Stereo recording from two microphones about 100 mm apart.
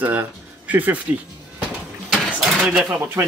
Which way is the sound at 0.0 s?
15° right (ahead or behind).